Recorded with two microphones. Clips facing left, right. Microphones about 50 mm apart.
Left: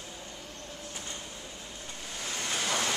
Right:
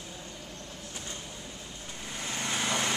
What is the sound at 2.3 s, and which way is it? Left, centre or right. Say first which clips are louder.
Vehicle: right 1 dB; right.